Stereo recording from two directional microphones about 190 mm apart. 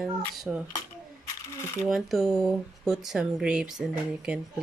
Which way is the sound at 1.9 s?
Centre (ahead or behind).